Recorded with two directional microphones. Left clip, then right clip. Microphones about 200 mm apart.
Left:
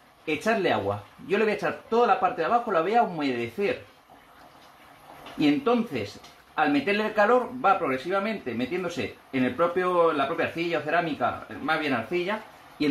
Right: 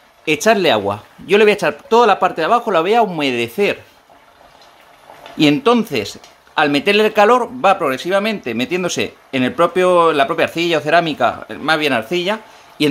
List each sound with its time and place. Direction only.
0.2 s a man's voice: 50° right (ahead or behind)
5.4 s a man's voice: 50° right (ahead or behind)